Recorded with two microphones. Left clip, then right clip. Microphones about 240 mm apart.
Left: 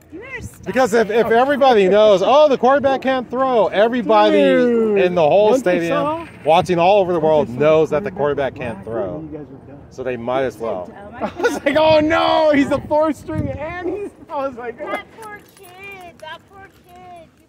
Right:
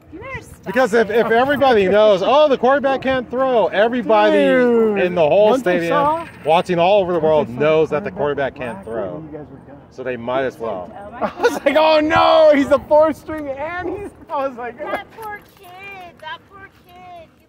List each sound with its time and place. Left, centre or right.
0.2 s a sound: centre
0.7 s speech: centre
4.3 s speech: right
4.9 s speech: centre
11.1 s speech: right
14.9 s speech: centre
15.8 s a sound: right